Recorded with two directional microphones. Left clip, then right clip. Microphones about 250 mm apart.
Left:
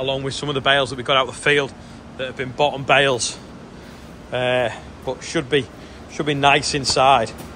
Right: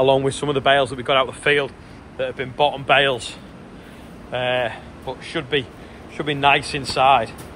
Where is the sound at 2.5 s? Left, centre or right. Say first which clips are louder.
Even; centre.